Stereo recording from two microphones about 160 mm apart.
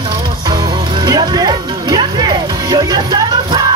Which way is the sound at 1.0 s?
25° right (ahead or behind).